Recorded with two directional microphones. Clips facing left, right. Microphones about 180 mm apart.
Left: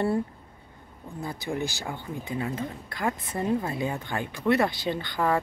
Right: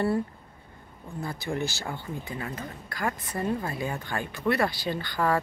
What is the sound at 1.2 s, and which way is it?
Speech, 15° left (ahead or behind).